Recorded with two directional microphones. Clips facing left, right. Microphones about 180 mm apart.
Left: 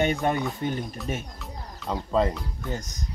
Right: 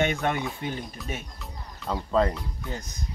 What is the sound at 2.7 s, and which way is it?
Speech, 45° left (ahead or behind).